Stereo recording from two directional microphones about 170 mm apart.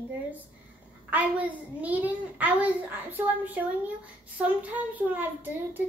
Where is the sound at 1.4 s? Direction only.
10° right (ahead or behind).